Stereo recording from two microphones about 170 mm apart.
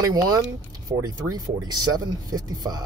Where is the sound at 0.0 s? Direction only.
20° right (ahead or behind).